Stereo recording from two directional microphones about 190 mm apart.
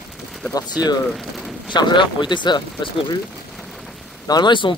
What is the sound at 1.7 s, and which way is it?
Speech, 25° left (ahead or behind).